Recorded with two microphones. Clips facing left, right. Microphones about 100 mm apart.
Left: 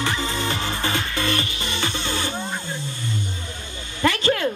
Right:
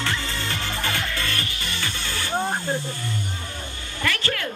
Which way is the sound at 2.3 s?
45° right (ahead or behind).